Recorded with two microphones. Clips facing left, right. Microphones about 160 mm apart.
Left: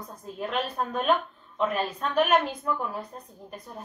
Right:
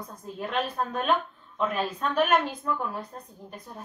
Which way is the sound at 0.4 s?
5° left (ahead or behind).